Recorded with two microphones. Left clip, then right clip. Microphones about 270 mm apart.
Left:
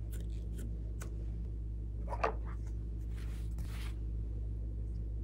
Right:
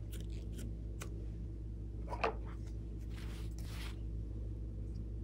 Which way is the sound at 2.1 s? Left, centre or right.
Centre.